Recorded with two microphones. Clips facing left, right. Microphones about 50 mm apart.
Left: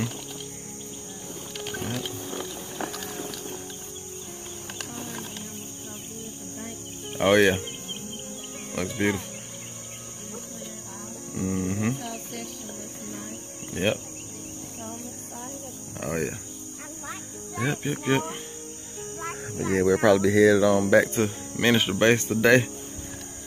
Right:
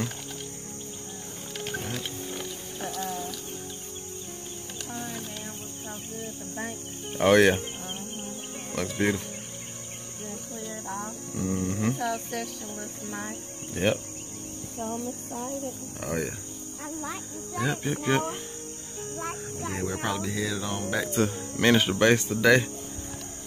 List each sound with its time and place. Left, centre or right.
7.1 s cricket: centre
8.7 s cricket: centre
11.3 s music: centre
13.9 s speech: left
16.0 s cricket: left
17.6 s speech: centre
19.6 s speech: left
21.2 s speech: centre
22.0 s speech: left